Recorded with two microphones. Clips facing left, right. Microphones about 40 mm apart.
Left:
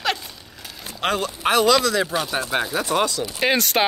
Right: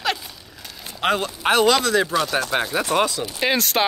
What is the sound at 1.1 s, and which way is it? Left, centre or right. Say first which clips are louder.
Speech: even; right.